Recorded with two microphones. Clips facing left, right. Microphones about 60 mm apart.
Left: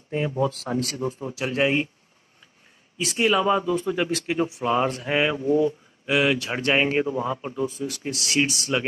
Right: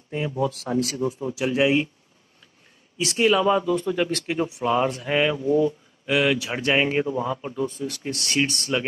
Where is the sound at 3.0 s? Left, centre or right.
Centre.